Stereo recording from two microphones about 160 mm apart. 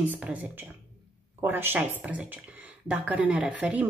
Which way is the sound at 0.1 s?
10° right (ahead or behind).